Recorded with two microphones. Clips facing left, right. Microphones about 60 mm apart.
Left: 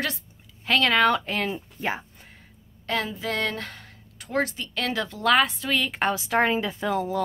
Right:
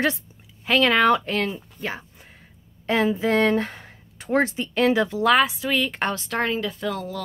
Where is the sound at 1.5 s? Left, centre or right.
Centre.